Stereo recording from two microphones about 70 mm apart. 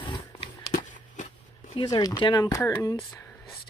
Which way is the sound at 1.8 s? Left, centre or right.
Left.